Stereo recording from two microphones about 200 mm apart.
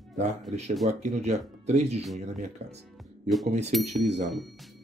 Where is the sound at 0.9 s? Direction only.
35° right (ahead or behind).